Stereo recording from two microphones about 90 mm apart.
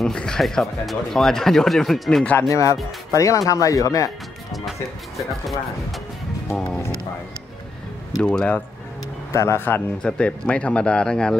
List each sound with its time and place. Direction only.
0.0 s speech: 10° left (ahead or behind)
2.5 s speech: 35° left (ahead or behind)
5.1 s speech: centre (ahead or behind)
8.2 s speech: 10° left (ahead or behind)
9.3 s speech: 30° left (ahead or behind)
10.0 s speech: 10° left (ahead or behind)